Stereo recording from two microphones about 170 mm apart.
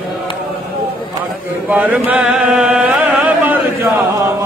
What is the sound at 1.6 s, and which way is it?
Chant, 10° right (ahead or behind).